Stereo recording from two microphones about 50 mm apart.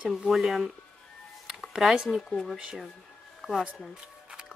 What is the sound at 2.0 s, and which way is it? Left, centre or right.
Speech, centre.